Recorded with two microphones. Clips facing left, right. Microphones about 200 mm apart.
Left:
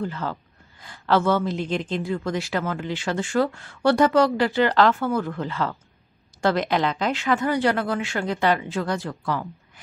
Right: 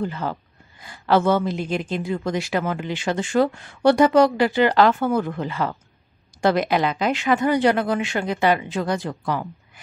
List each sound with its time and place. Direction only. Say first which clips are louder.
0.0 s a man's voice: right 2 dB; 15° right (ahead or behind)